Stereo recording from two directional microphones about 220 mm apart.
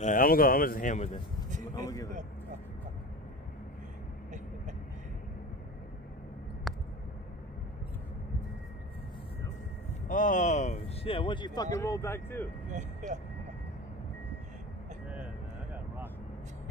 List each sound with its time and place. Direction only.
0.0 s a man's voice: 40° left (ahead or behind)
1.8 s speech: 15° left (ahead or behind)
6.7 s a sound: centre (ahead or behind)
10.0 s speech: 35° left (ahead or behind); by 12.4 s 10° left (ahead or behind)
12.7 s speech: 35° right (ahead or behind)